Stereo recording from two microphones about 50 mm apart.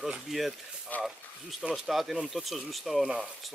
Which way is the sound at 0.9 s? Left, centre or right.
Left.